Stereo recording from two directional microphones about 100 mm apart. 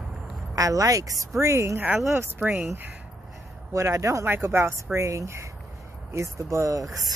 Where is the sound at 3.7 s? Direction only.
30° right (ahead or behind).